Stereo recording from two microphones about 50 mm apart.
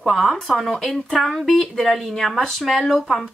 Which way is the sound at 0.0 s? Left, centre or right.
Centre.